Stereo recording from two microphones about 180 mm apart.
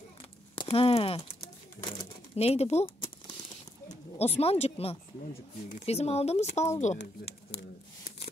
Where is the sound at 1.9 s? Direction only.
35° left (ahead or behind).